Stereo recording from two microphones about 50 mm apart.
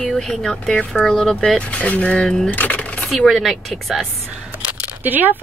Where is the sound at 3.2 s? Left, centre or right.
Centre.